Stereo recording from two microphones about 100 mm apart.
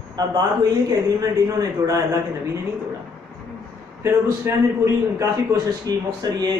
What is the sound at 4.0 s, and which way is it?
A man's voice, 25° right (ahead or behind).